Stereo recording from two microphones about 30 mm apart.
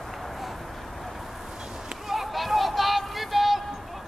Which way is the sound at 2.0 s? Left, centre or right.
Centre.